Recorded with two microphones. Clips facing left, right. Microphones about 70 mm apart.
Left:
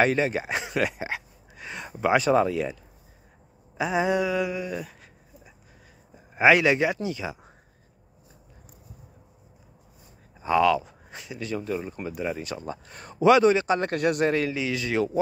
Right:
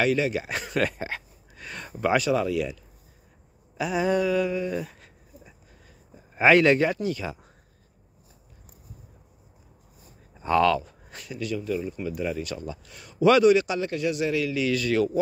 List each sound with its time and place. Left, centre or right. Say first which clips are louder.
0.0 s speech: left 1 dB; left
2.2 s speech: left 3 dB; left
3.7 s a sound: even; left; by 5.5 s centre
6.3 s speech: right 1 dB; centre
10.3 s speech: even; centre
10.8 s a sound: left 1 dB; centre
11.4 s a man's voice: right 1 dB; left
12.6 s speech: left 2 dB; left
13.2 s a man's voice: even; left
13.7 s speech: left 2 dB; left
14.5 s a man's voice: right 3 dB; left